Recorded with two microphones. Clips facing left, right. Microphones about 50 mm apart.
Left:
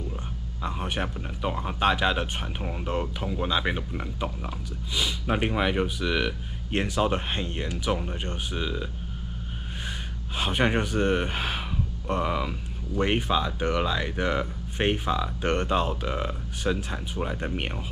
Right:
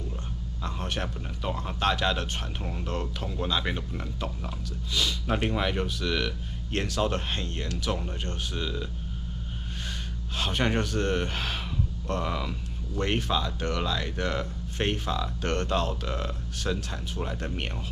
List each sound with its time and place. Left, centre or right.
0.7 s speech: centre
10.3 s speech: centre